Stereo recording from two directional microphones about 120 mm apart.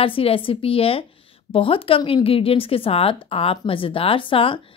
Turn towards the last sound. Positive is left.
turn(degrees=45)  # may be behind; listen again after turning